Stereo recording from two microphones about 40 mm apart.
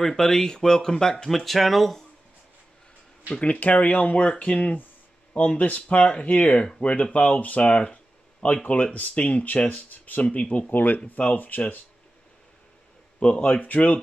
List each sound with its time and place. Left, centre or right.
0.0 s speech: centre
3.3 s speech: left
7.6 s speech: left
8.4 s speech: left
13.2 s speech: left